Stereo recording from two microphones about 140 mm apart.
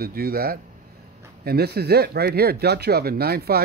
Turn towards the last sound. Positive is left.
turn(degrees=-90)